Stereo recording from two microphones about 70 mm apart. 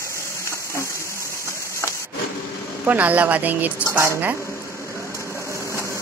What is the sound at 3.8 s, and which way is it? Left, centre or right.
Speech, right.